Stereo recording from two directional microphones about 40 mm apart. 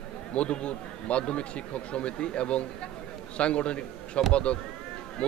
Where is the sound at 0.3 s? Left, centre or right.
Left.